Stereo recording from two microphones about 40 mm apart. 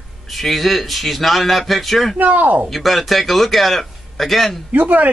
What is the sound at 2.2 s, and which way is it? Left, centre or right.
Speech, right.